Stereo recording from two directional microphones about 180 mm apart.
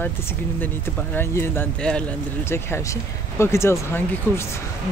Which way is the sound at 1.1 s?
15° left (ahead or behind).